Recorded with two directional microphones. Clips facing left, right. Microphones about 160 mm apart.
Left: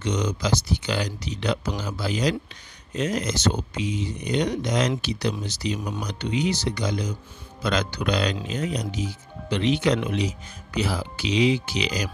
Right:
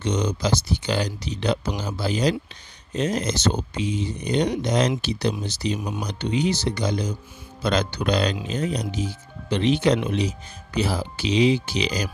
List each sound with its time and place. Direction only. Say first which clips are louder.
0.0 s speech: right 2 dB; 30° right (ahead or behind)